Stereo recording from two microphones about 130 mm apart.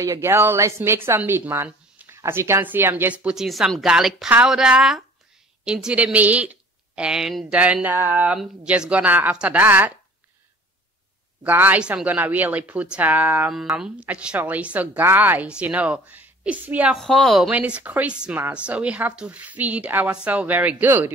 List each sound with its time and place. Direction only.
0.0 s speech: 20° right (ahead or behind)
11.4 s speech: 15° right (ahead or behind)
16.9 s speech: centre (ahead or behind); by 21.1 s 15° right (ahead or behind)